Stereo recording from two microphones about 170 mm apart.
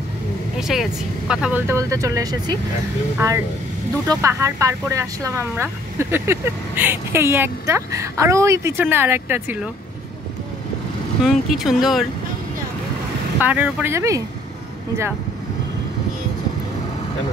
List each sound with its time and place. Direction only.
0.6 s speech: 5° right (ahead or behind)
1.7 s speech: 20° right (ahead or behind)
11.2 s speech: centre (ahead or behind)
13.4 s speech: 10° right (ahead or behind)